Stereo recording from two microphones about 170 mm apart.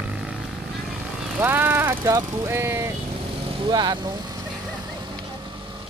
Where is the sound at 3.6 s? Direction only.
25° right (ahead or behind).